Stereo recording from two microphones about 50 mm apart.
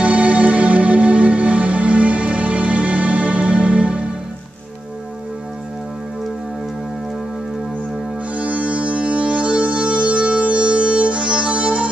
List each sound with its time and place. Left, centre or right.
0.0 s music: right
8.4 s music: right